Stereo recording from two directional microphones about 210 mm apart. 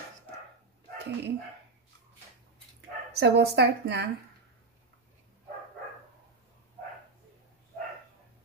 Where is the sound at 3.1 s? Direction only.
55° right (ahead or behind).